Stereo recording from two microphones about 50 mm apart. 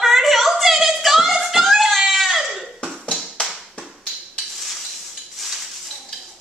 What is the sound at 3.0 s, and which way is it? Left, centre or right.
Tap, centre.